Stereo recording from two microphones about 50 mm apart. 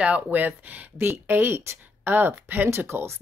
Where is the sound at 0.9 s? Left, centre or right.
Right.